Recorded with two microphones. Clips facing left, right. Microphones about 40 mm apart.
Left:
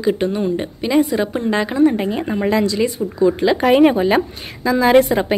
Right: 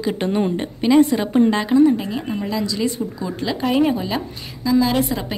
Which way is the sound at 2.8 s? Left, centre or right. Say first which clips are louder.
Left 7 dB; left.